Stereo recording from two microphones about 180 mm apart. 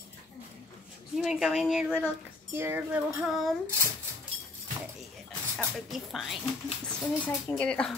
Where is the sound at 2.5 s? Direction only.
10° right (ahead or behind).